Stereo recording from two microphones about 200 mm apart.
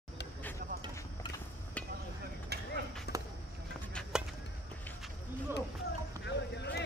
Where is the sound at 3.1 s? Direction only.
55° left (ahead or behind).